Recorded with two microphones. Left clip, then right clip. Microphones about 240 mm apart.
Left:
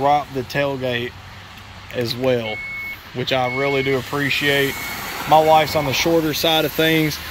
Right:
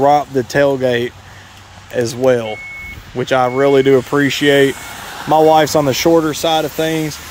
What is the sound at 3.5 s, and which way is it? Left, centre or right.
Speech, right.